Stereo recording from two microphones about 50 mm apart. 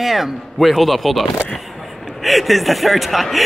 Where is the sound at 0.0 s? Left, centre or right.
Centre.